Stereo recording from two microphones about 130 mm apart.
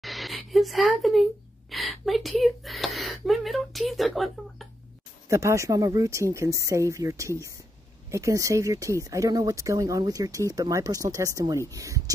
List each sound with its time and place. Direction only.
0.0 s a sound: centre (ahead or behind)
1.7 s speech: centre (ahead or behind)
5.3 s speech: 25° right (ahead or behind)